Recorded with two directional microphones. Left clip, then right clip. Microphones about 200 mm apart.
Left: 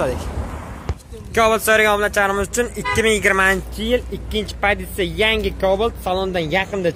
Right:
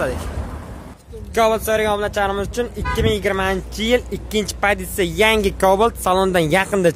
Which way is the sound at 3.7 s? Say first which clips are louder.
Right 2 dB; 15° right (ahead or behind).